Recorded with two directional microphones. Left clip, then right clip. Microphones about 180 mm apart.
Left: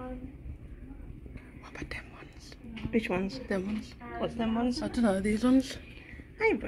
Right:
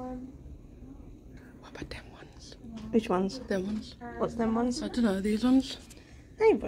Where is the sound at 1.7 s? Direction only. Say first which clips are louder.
Left 2 dB; centre (ahead or behind).